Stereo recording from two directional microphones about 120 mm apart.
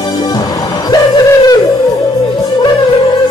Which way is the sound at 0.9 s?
30° left (ahead or behind).